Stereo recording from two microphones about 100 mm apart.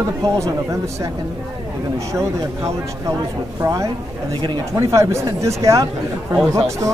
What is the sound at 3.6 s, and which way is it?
Speech, 30° right (ahead or behind).